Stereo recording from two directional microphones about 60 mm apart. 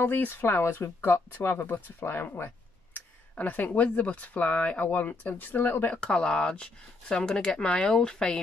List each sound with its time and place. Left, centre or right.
0.0 s speech: left
3.3 s speech: left
5.9 s speech: centre